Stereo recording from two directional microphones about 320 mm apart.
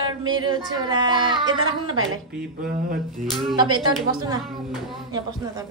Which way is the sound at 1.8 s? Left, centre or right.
Right.